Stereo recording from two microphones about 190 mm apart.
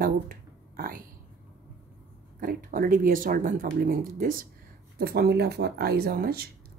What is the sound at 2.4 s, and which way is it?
Speech, 50° right (ahead or behind).